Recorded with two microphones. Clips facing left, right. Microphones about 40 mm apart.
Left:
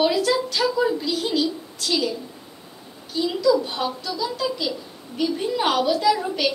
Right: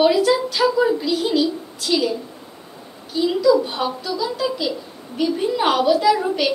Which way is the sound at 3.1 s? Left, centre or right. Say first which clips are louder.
Right 4 dB; centre.